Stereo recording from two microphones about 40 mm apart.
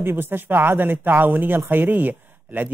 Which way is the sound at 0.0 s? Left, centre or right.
Right.